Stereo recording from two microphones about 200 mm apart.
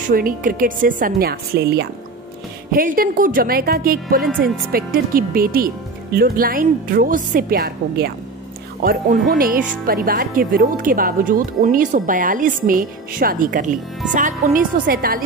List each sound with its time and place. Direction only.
0.1 s speech: 45° right (ahead or behind)
9.3 s speech: 45° right (ahead or behind)